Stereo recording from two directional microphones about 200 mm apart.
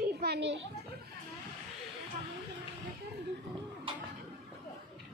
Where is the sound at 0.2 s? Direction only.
60° right (ahead or behind).